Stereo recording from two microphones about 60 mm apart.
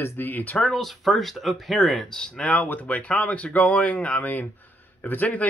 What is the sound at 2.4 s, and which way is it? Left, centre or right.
Speech, left.